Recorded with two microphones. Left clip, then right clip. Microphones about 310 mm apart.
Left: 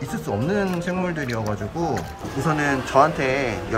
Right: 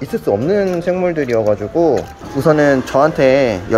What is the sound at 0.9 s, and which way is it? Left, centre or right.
Speech, centre.